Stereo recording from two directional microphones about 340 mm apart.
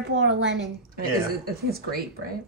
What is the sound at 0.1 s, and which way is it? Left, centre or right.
Speech, right.